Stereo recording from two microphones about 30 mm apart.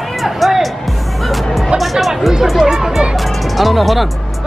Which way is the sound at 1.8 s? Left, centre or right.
Centre.